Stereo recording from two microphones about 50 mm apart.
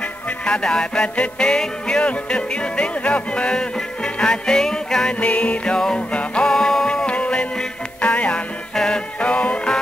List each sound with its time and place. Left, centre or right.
0.5 s music: centre
5.2 s music: left
6.5 s music: centre
7.1 s music: left